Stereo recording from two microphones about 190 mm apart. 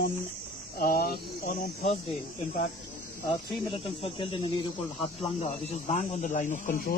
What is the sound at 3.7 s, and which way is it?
A man's voice, 30° left (ahead or behind).